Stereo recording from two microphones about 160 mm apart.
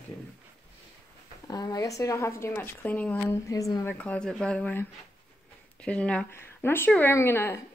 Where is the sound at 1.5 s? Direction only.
25° left (ahead or behind).